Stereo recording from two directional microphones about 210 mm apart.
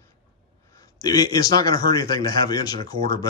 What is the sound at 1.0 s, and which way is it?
A man's voice, 15° left (ahead or behind).